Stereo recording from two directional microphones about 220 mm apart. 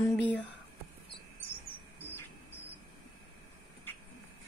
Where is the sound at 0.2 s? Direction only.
5° left (ahead or behind).